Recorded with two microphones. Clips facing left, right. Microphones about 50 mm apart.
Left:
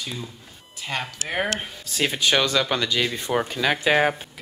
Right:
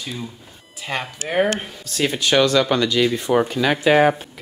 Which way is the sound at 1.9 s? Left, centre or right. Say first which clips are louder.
Right 3 dB; centre.